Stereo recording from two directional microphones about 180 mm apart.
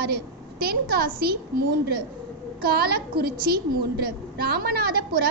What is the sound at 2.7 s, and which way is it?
A woman's voice, 60° right (ahead or behind).